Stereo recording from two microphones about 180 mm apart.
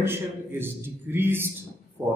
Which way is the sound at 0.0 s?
10° right (ahead or behind).